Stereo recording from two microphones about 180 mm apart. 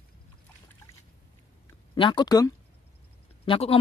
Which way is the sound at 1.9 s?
25° left (ahead or behind).